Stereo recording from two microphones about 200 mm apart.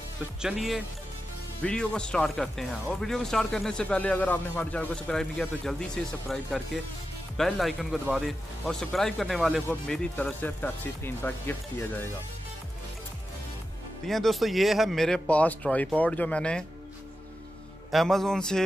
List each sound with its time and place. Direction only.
0.4 s speech: centre (ahead or behind)
14.0 s speech: centre (ahead or behind)
17.9 s speech: centre (ahead or behind)